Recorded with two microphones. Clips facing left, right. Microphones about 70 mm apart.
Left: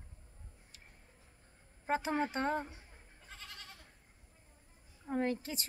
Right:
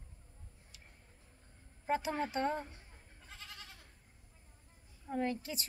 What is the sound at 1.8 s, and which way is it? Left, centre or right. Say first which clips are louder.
Speech: left 1 dB; left.